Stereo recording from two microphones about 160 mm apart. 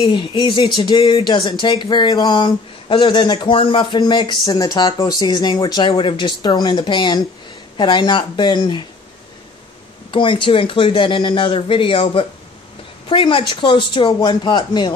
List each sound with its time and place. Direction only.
0.0 s speech: 30° left (ahead or behind)
10.1 s speech: 30° left (ahead or behind)